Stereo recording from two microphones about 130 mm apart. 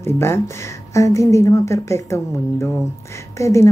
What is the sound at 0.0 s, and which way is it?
Speech, 20° left (ahead or behind).